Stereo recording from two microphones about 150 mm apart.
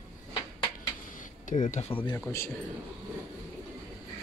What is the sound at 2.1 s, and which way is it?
Speech, 15° left (ahead or behind).